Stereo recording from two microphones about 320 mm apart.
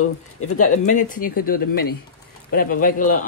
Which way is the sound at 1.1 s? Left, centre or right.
Left.